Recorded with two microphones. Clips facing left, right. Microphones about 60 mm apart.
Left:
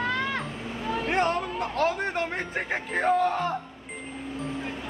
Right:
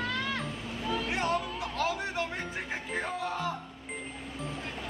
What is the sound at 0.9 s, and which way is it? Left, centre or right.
Speech, left.